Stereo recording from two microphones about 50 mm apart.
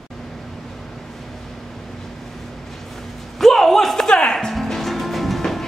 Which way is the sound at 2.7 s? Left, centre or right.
Centre.